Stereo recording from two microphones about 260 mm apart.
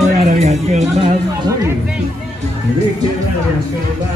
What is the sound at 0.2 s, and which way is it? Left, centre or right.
Music, right.